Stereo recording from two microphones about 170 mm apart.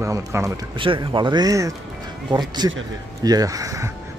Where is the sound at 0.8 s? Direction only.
30° right (ahead or behind).